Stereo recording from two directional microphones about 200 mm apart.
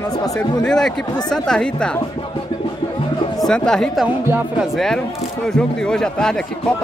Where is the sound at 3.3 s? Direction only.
5° left (ahead or behind).